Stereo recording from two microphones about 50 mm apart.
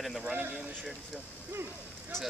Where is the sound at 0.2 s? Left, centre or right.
Right.